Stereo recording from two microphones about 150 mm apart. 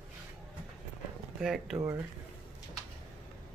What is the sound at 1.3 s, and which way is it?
Speech, 5° right (ahead or behind).